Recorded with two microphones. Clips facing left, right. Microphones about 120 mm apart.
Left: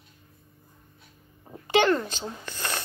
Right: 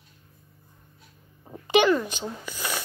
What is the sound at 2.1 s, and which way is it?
Speech, 15° right (ahead or behind).